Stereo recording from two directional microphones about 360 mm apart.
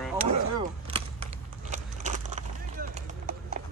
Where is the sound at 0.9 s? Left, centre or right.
Centre.